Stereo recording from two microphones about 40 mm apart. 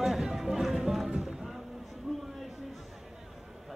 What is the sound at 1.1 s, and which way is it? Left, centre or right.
Music, centre.